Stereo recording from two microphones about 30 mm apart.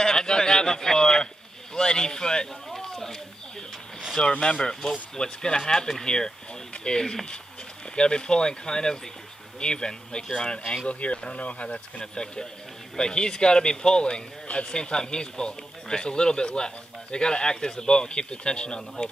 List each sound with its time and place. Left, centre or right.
0.0 s a sound: left
4.2 s speech: left
4.6 s speech: centre
10.9 s speech: left
12.0 s speech: left